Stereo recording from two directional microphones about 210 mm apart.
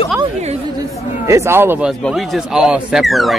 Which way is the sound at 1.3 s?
15° right (ahead or behind).